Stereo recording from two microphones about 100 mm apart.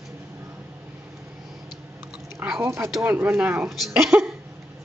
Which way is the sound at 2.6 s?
25° right (ahead or behind).